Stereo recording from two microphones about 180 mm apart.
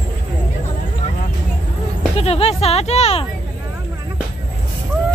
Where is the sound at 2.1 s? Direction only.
35° left (ahead or behind).